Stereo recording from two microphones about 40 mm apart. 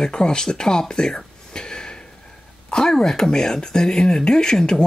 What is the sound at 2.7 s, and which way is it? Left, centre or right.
Speech, centre.